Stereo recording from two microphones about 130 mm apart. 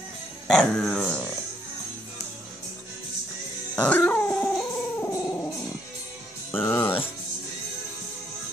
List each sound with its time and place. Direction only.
0.5 s speech: 5° left (ahead or behind)
3.7 s dog: 10° left (ahead or behind)
5.0 s music: 20° left (ahead or behind)
6.5 s music: 15° left (ahead or behind)